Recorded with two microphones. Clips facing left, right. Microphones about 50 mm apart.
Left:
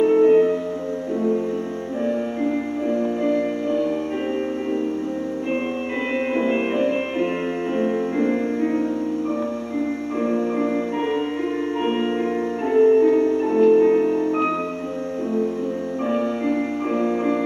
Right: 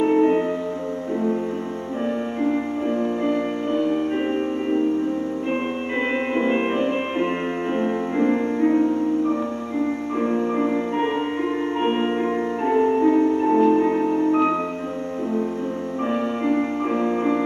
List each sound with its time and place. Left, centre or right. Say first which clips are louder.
0.0 s music: left 3 dB; centre
2.9 s music: left 2 dB; centre
6.3 s music: even; centre
10.2 s music: even; centre
16.1 s music: even; centre